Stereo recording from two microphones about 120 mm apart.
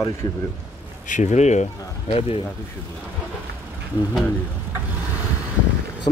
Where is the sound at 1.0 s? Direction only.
85° left.